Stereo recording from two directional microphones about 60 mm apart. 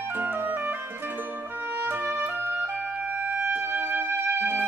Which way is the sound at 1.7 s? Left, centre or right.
Right.